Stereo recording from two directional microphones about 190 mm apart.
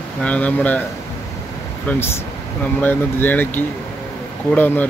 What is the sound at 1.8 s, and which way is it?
Speech, 10° left (ahead or behind).